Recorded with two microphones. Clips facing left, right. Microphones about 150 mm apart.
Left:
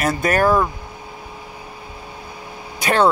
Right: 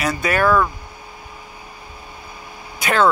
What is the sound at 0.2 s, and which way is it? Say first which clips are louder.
Speech: left 1 dB; 40° left (ahead or behind).